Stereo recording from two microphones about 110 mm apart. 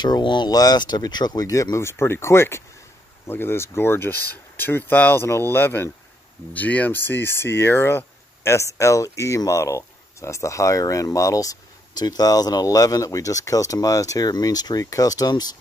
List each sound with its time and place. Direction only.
0.0 s speech: 45° left (ahead or behind)